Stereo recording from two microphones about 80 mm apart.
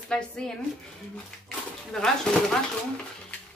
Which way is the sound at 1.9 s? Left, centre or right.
Centre.